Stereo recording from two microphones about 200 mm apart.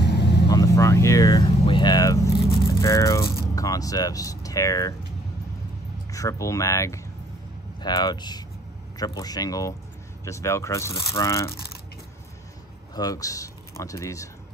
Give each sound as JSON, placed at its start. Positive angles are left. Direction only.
{"t": 0.0, "sound": "vehicle", "side_deg": 55}
{"t": 0.5, "sound": "speech", "side_deg": 15}
{"t": 6.1, "sound": "speech", "side_deg": 15}
{"t": 12.9, "sound": "speech", "side_deg": 15}